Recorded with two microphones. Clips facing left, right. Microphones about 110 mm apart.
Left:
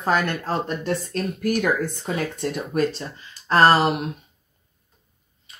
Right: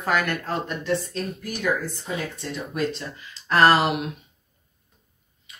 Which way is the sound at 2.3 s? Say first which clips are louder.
Left 7 dB; 55° left (ahead or behind).